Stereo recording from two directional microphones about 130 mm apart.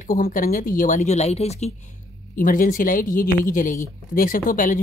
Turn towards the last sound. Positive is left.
turn(degrees=90)